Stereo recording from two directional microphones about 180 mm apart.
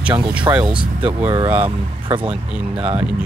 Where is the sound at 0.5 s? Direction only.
10° right (ahead or behind).